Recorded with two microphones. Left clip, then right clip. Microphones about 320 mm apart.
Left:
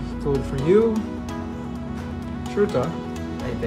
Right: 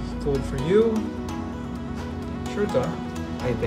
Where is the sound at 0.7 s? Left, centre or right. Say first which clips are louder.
Left 2 dB; centre.